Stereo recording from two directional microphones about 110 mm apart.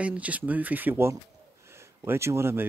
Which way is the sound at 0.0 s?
15° right (ahead or behind).